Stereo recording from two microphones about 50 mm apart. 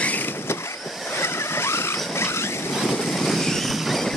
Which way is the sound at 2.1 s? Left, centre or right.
Left.